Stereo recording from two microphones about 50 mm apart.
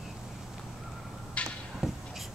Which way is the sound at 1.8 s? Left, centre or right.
Centre.